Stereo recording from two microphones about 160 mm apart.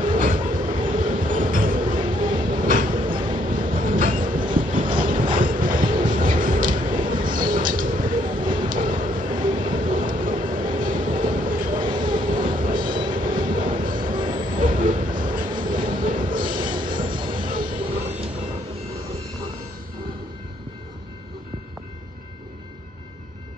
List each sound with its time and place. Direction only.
0.0 s train: 55° right (ahead or behind)
9.5 s vehicle: 30° right (ahead or behind)
9.8 s train: 60° right (ahead or behind)
11.9 s vehicle: 30° right (ahead or behind)
12.5 s train: 60° right (ahead or behind)
12.8 s train: 30° right (ahead or behind)
13.2 s train: 60° right (ahead or behind)
13.7 s a sound: 60° right (ahead or behind)
14.1 s music: 30° right (ahead or behind)
14.5 s train: 60° right (ahead or behind)
16.6 s train: 30° right (ahead or behind)
17.5 s train: 60° right (ahead or behind)